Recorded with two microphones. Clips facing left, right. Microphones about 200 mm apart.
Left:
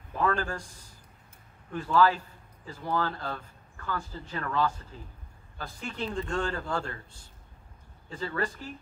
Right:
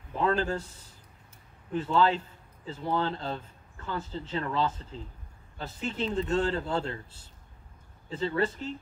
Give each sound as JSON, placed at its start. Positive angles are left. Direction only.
{"t": 0.1, "sound": "a man's voice", "side_deg": -25}
{"t": 1.7, "sound": "a man's voice", "side_deg": -25}
{"t": 8.1, "sound": "a man's voice", "side_deg": -25}